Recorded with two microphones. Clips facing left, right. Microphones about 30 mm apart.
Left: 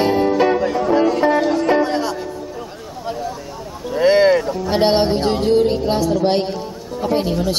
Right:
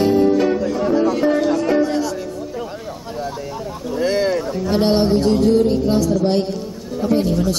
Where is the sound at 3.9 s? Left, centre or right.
Left.